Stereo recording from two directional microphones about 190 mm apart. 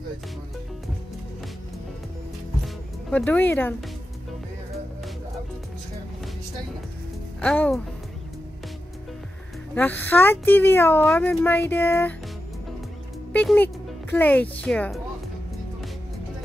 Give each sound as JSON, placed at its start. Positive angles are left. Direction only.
{"t": 2.6, "sound": "music", "side_deg": 5}
{"t": 7.4, "sound": "speech", "side_deg": 5}
{"t": 9.8, "sound": "speech", "side_deg": 10}
{"t": 13.3, "sound": "speech", "side_deg": 10}